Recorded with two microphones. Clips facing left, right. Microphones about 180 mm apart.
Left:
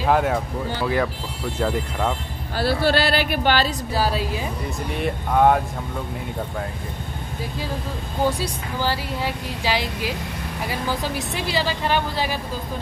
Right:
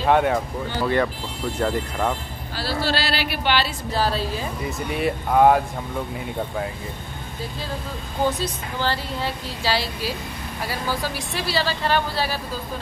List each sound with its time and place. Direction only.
0.0 s speech: centre (ahead or behind)
2.5 s speech: 55° left (ahead or behind)
3.9 s a woman's voice: 10° left (ahead or behind)
4.6 s speech: centre (ahead or behind)
8.4 s a woman's voice: 10° left (ahead or behind)